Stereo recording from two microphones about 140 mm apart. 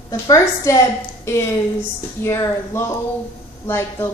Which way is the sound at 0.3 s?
20° left (ahead or behind).